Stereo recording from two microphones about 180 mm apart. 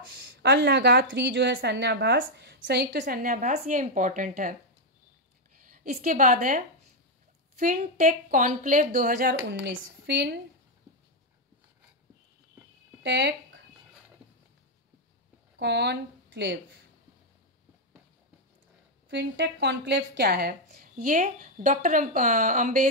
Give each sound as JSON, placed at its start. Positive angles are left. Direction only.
{"t": 0.2, "sound": "speech", "side_deg": -70}
{"t": 5.7, "sound": "a woman's voice", "side_deg": -50}
{"t": 10.0, "sound": "a woman's voice", "side_deg": -70}
{"t": 13.0, "sound": "speech", "side_deg": -70}
{"t": 15.6, "sound": "speech", "side_deg": -70}
{"t": 19.0, "sound": "a woman's voice", "side_deg": -75}